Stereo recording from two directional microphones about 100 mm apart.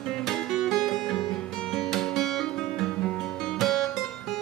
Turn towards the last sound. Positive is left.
turn(degrees=5)  # may be behind; listen again after turning